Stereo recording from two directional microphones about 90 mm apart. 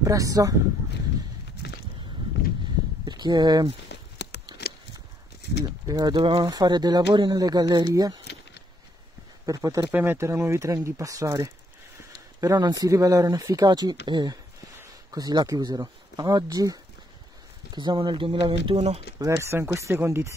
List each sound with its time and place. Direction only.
0.0 s speech: 40° right (ahead or behind)
3.1 s speech: 55° right (ahead or behind)
4.5 s a sound: 55° right (ahead or behind)
5.9 s speech: 50° right (ahead or behind)
9.5 s speech: 40° right (ahead or behind)
9.8 s speech: 20° right (ahead or behind)
10.1 s speech: 30° right (ahead or behind)
13.7 s speech: 50° right (ahead or behind)
15.0 s speech: 45° right (ahead or behind)
17.7 s speech: 60° right (ahead or behind); by 18.8 s 75° right (ahead or behind)
19.1 s speech: 35° right (ahead or behind)